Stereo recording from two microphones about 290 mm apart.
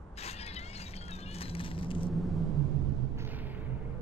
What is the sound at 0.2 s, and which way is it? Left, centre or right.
Vehicle, left.